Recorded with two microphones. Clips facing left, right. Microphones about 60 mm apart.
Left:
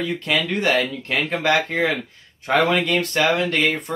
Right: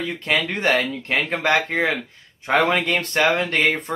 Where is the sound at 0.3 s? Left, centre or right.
Right.